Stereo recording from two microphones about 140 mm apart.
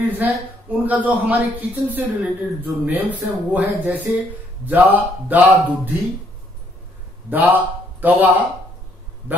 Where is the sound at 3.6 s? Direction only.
10° right (ahead or behind).